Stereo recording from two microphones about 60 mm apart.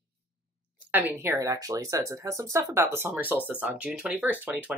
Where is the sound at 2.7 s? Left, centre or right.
Right.